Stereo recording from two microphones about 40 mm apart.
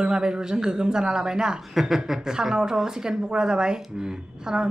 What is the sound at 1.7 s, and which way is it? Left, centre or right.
A woman's voice, centre.